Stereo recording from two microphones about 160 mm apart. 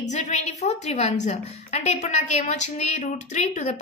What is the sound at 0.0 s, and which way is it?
A woman's voice, 45° left (ahead or behind).